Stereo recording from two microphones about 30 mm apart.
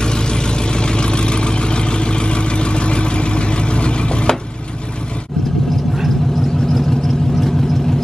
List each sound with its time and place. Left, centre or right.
0.0 s vehicle: left